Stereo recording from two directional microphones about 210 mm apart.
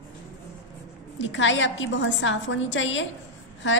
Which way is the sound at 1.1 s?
60° left (ahead or behind).